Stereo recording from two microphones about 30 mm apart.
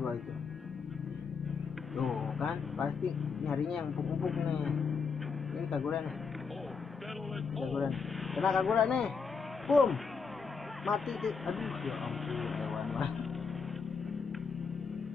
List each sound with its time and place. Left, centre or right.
2.0 s vehicle: centre
3.4 s speech: centre
3.9 s speech: centre
7.5 s speech: centre
8.8 s speech: centre
9.7 s speech: centre